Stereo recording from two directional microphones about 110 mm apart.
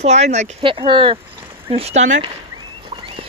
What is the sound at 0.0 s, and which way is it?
Speech, 90° right.